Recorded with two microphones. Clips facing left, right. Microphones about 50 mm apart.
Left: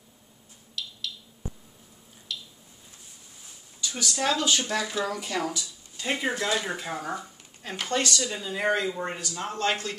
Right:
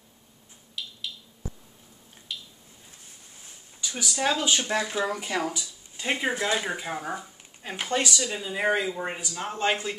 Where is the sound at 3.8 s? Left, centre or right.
Centre.